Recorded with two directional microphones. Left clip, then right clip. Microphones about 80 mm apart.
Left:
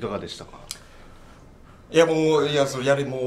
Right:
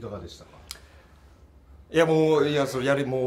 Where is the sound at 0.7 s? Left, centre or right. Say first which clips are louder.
Left 3 dB; centre.